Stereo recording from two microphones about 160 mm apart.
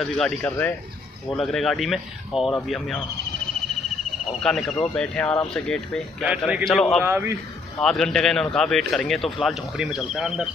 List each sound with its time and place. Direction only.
0.0 s a man's voice: 10° left (ahead or behind)
4.4 s a man's voice: 5° left (ahead or behind)
6.2 s a man's voice: 5° right (ahead or behind)
7.1 s a man's voice: 15° right (ahead or behind)
7.8 s a man's voice: 5° left (ahead or behind)